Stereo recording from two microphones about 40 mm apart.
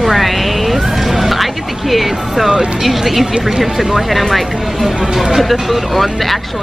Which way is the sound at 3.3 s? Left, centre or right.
Centre.